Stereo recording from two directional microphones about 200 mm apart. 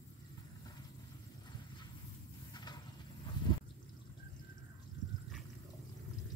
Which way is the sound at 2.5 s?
20° left (ahead or behind).